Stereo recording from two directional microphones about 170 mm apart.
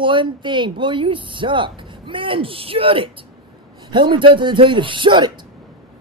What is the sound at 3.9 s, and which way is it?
Speech, 30° right (ahead or behind).